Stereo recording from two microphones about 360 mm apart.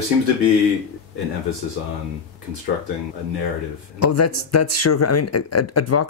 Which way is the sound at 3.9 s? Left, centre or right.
Left.